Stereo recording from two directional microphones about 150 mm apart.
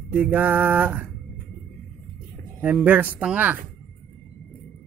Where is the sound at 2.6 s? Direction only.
10° right (ahead or behind).